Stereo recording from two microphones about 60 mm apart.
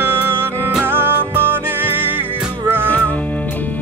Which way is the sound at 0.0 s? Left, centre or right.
Right.